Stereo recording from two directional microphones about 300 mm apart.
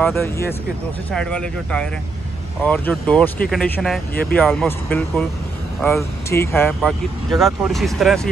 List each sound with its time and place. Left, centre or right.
0.0 s speech: centre
4.1 s speech: left
4.4 s speech: centre